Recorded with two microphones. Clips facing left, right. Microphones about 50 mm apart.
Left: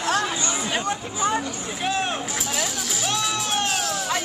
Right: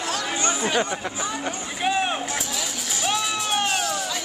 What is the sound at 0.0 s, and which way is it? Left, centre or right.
Chatter, left.